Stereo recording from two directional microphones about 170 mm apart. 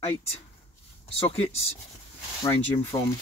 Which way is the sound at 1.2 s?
35° left (ahead or behind).